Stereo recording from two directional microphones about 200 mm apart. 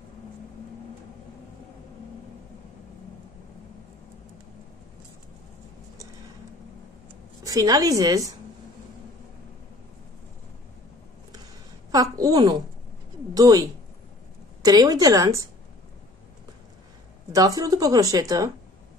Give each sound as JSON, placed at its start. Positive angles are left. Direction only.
{"t": 7.4, "sound": "speech", "side_deg": -20}
{"t": 11.9, "sound": "a woman's voice", "side_deg": -20}
{"t": 17.3, "sound": "speech", "side_deg": -20}